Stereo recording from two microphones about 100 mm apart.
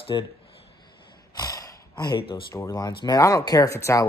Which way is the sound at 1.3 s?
40° left (ahead or behind).